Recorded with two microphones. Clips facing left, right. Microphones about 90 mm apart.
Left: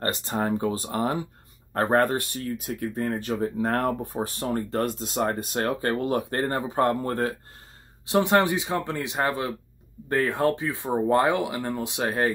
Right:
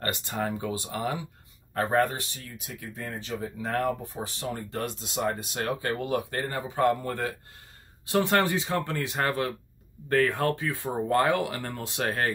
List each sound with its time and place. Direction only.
0.0 s speech: 35° left (ahead or behind)
8.0 s speech: 20° left (ahead or behind)